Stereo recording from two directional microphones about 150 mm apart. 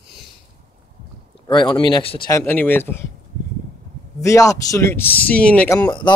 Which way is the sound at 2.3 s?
15° left (ahead or behind).